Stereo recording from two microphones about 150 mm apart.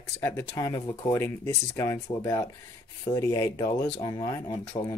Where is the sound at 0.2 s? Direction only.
15° left (ahead or behind).